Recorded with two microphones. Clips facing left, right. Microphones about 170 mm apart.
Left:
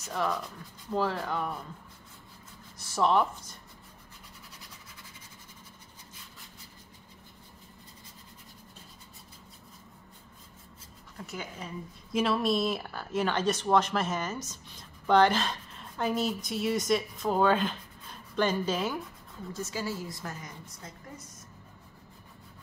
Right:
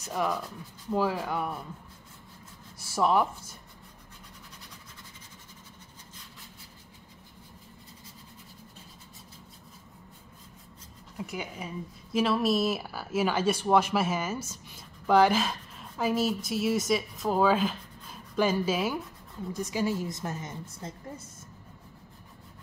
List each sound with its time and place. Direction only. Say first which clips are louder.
0.1 s speech: right 1 dB; 10° right (ahead or behind)
2.8 s speech: right 1 dB; 10° right (ahead or behind)
11.1 s a woman's voice: right 3 dB; 10° right (ahead or behind); by 21.3 s 25° right (ahead or behind)